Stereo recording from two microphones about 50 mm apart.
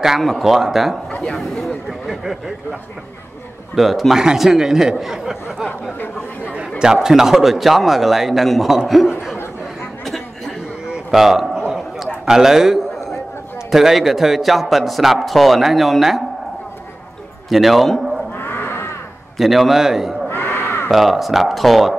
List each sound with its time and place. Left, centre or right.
0.2 s a man's voice: centre
1.3 s speech: centre
1.9 s a man's voice: centre
3.7 s a man's voice: centre
6.4 s chatter: right
6.8 s a man's voice: centre
10.0 s a sound: centre
11.1 s a man's voice: centre
17.5 s a man's voice: centre
18.3 s a sound: left
19.3 s a man's voice: centre
20.2 s a sound: left
20.9 s a man's voice: centre